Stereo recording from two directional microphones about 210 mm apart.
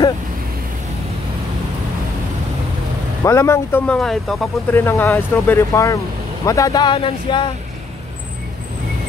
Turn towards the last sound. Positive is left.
turn(degrees=25)  # may be behind; listen again after turning